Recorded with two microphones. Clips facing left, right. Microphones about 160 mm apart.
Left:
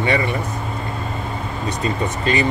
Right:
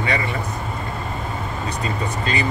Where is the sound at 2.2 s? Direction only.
25° left (ahead or behind).